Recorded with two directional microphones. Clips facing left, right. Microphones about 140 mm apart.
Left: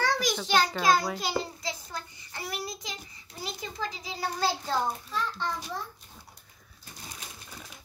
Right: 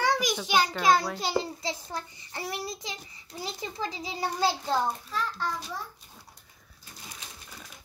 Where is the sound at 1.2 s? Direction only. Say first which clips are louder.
Right 2 dB; 25° right (ahead or behind).